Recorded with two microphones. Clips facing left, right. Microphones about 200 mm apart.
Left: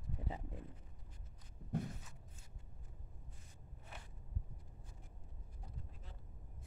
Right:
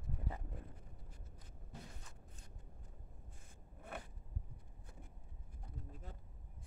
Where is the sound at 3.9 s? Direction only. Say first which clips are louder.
Right 8 dB; 55° right (ahead or behind).